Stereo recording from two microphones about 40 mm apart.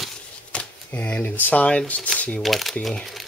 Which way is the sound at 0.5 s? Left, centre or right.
Left.